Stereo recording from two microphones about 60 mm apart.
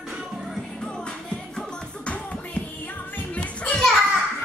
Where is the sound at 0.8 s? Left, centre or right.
Centre.